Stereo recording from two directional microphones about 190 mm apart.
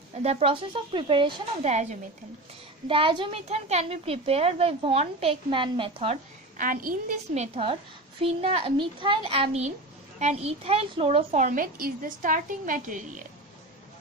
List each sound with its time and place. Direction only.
0.2 s a woman's voice: 35° right (ahead or behind)
2.9 s a woman's voice: 25° right (ahead or behind)
6.6 s a child's voice: 45° right (ahead or behind)
8.2 s a woman's voice: 35° right (ahead or behind)